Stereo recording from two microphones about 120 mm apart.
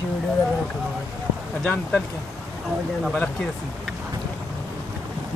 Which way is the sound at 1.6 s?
10° left (ahead or behind).